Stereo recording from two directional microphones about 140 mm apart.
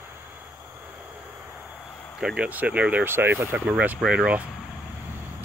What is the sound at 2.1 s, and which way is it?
Speech, 5° right (ahead or behind).